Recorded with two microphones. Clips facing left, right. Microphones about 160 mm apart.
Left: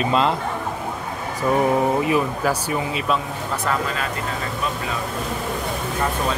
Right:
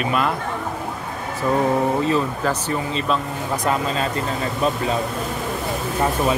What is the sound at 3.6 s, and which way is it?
Speech, 25° right (ahead or behind).